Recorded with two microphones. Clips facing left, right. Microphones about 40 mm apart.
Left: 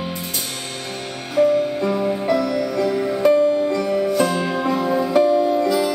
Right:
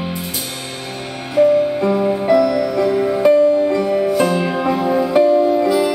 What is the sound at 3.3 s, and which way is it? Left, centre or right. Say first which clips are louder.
Music: right 4 dB; centre.